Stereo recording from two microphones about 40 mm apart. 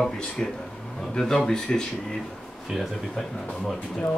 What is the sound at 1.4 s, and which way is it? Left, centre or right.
Speech, centre.